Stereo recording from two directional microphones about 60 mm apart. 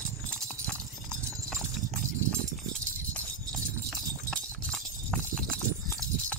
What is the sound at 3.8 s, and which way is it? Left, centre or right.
Clip-clop, centre.